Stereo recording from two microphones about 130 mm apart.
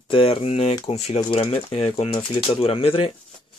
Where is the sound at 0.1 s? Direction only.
45° left (ahead or behind).